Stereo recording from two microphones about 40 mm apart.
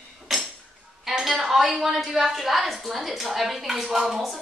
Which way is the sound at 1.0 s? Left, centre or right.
Centre.